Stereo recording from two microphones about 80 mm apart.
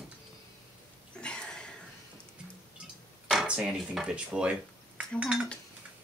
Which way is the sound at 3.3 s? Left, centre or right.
Centre.